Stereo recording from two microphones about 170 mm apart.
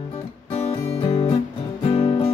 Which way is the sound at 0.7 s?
30° left (ahead or behind).